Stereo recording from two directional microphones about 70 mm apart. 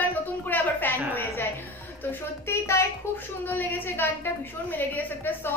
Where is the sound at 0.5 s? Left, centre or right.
Left.